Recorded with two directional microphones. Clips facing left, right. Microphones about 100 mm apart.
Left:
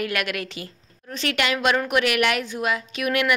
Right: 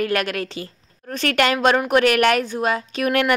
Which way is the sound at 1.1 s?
45° right (ahead or behind).